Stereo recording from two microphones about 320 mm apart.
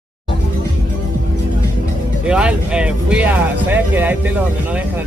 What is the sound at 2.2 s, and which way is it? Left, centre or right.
Speech, centre.